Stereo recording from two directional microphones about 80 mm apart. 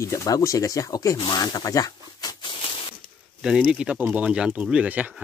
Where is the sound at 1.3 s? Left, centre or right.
Left.